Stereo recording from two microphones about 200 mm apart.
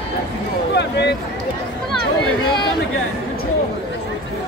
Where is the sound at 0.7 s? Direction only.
60° left (ahead or behind).